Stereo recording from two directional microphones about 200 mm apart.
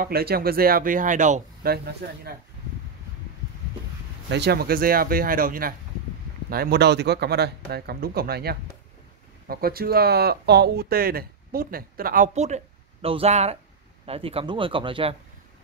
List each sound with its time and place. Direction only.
0.0 s speech: 50° right (ahead or behind)
4.3 s speech: 55° right (ahead or behind); by 15.1 s 25° right (ahead or behind)